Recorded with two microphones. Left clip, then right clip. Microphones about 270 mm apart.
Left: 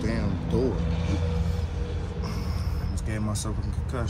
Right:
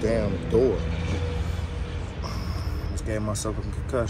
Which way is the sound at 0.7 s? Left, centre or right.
Left.